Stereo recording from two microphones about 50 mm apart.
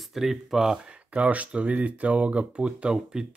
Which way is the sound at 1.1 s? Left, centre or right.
Right.